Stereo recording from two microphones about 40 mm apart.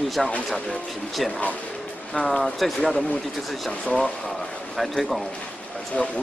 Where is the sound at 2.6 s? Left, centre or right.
Centre.